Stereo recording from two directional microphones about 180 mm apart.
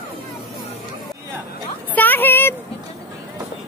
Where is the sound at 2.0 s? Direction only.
10° left (ahead or behind).